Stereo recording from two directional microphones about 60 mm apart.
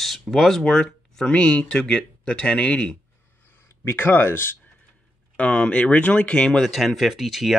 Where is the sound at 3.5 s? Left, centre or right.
Left.